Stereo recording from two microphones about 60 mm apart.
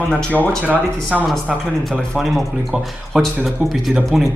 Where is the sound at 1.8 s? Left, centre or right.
Centre.